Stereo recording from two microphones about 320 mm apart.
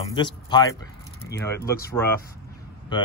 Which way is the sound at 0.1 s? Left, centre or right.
Centre.